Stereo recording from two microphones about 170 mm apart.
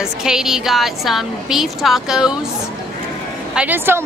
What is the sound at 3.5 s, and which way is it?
Speech, 10° right (ahead or behind).